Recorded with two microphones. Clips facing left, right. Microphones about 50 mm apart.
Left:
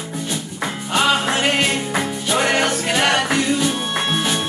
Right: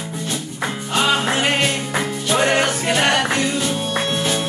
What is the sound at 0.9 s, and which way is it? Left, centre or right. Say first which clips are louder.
Music: left 1 dB; centre.